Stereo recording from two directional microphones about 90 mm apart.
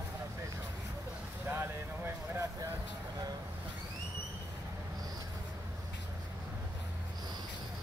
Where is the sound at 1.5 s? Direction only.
25° right (ahead or behind).